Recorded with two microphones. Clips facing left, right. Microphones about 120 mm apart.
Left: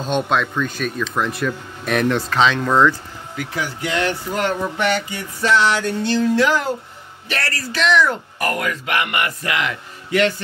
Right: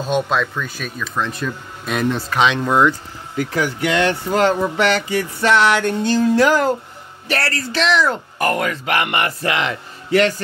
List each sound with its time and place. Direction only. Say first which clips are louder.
0.0 s speech: right 1 dB; 5° right (ahead or behind)
1.1 s speech: left 1 dB; 10° left (ahead or behind)
1.9 s speech: left 1 dB; 65° left (ahead or behind)
2.3 s speech: right 1 dB; 15° right (ahead or behind)
3.5 s speech: right 5 dB; 50° right (ahead or behind)
3.9 s music: right 3 dB; 80° right; by 6.7 s 45° right (ahead or behind)
7.2 s speech: right 4 dB; 35° right (ahead or behind)